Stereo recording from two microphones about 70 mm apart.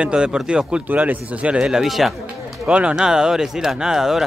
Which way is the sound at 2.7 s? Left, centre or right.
Centre.